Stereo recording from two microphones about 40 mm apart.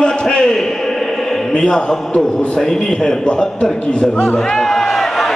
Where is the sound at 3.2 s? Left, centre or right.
Left.